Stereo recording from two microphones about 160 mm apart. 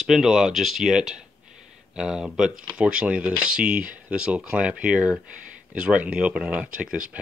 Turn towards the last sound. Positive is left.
turn(degrees=-5)  # may be behind; listen again after turning